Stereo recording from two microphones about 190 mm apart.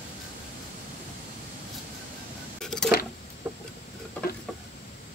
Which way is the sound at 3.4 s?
10° right (ahead or behind).